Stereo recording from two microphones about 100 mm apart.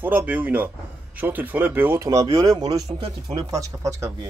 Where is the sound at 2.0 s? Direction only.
35° right (ahead or behind).